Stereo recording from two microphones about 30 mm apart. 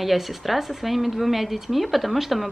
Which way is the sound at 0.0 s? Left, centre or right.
Centre.